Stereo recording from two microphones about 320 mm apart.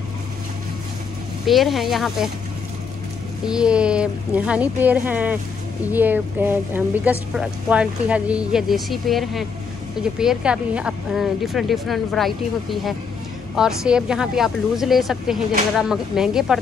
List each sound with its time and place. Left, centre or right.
1.4 s a woman's voice: centre
3.4 s a woman's voice: centre
13.6 s a woman's voice: centre